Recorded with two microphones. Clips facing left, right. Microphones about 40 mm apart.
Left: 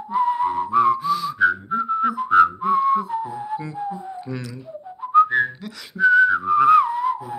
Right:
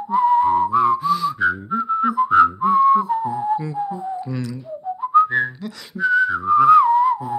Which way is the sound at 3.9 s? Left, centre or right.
Centre.